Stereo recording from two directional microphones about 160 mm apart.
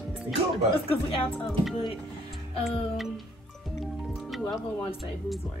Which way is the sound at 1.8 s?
Centre (ahead or behind).